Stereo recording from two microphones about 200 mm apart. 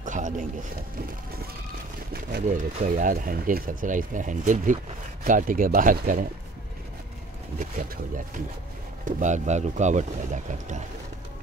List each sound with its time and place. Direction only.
0.0 s a sound: 40° right (ahead or behind)
2.4 s speech: 40° right (ahead or behind)
9.0 s speech: 35° right (ahead or behind)